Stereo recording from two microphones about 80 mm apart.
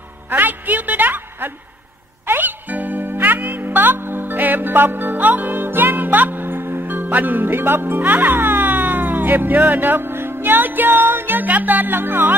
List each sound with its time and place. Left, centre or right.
0.3 s music: right